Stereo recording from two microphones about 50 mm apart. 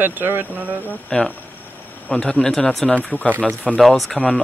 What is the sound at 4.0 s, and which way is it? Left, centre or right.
Speech, centre.